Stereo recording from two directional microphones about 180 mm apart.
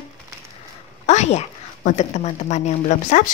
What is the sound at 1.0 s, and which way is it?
A woman's voice, 40° left (ahead or behind).